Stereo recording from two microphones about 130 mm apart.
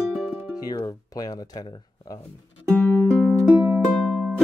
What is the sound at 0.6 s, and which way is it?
Speech, 30° left (ahead or behind).